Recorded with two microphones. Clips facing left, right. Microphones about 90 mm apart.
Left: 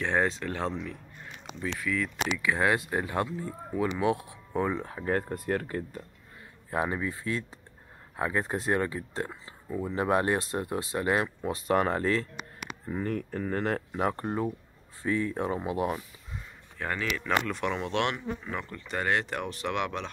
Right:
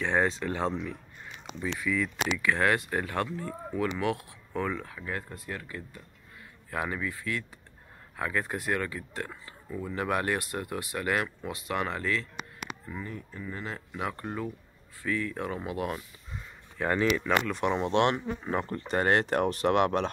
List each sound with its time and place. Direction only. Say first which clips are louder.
0.0 s speech: even; centre (ahead or behind)
2.4 s speech: even; 15° left (ahead or behind)
4.8 s speech: left 7 dB; 40° left (ahead or behind)
6.7 s speech: left 3 dB; 25° left (ahead or behind)
12.9 s speech: left 13 dB; 60° left (ahead or behind)
13.9 s speech: left 5 dB; 35° left (ahead or behind)
16.8 s speech: right 5 dB; 20° right (ahead or behind); by 20.1 s 45° right (ahead or behind)